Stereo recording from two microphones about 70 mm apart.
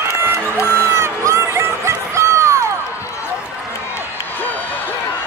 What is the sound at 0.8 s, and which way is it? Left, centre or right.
Music, right.